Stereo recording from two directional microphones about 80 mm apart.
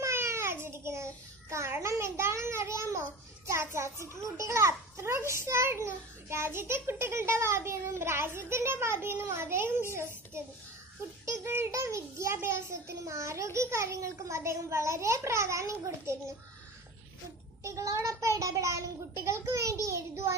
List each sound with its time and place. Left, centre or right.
0.0 s a sound: right
4.4 s a child's voice: right
11.2 s a child's voice: right
17.6 s a child's voice: right